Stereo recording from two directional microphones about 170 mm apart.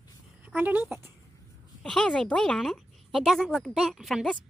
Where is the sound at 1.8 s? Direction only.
5° left (ahead or behind).